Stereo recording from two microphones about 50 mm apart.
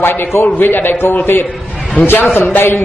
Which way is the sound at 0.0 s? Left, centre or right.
Left.